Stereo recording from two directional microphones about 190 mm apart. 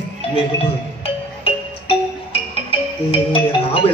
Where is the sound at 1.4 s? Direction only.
30° left (ahead or behind).